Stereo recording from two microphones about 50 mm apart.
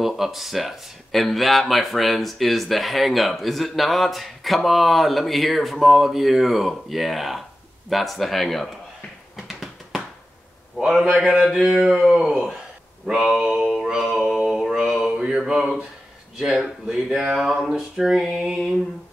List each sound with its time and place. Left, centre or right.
0.0 s speech: centre
9.5 s a sound: centre
10.9 s speech: centre
14.7 s mantra: centre
16.3 s a man's voice: centre
17.4 s speech: centre